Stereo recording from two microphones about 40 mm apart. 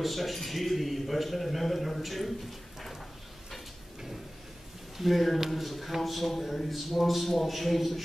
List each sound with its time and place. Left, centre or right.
0.0 s a man's voice: centre
3.5 s sliding door: centre
4.9 s a man's voice: centre